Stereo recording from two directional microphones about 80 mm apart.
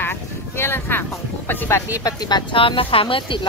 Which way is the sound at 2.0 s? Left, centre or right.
Left.